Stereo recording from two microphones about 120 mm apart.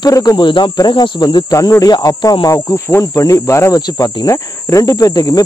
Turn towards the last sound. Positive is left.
turn(degrees=30)  # may be behind; listen again after turning